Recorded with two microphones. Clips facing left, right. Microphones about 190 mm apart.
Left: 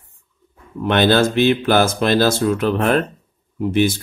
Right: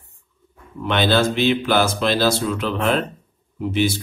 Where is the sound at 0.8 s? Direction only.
50° left (ahead or behind).